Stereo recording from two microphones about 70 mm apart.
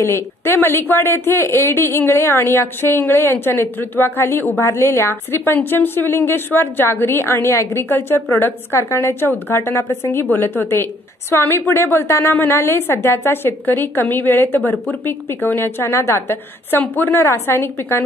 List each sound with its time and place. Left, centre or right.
0.0 s a woman's voice: left